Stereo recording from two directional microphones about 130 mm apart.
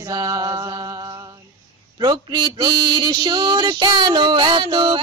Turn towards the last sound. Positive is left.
turn(degrees=-40)  # may be behind; listen again after turning